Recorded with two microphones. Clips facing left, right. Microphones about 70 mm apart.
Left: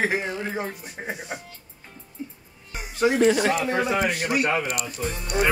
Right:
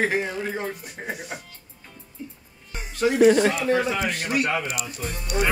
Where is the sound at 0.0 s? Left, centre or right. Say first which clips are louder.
Right 1 dB; centre.